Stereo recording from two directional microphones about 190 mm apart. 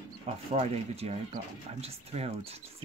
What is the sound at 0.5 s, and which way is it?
Speech, 30° right (ahead or behind).